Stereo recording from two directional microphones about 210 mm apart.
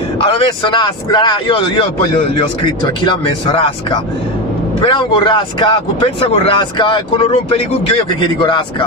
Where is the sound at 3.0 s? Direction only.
20° left (ahead or behind).